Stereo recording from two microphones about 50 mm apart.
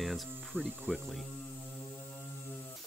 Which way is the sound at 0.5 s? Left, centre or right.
Right.